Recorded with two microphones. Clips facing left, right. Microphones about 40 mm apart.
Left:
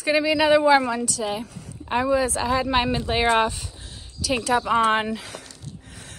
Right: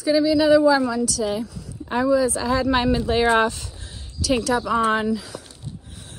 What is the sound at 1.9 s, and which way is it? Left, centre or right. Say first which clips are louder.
Speech: right 2 dB; left.